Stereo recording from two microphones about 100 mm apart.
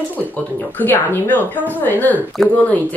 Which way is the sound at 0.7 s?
20° left (ahead or behind).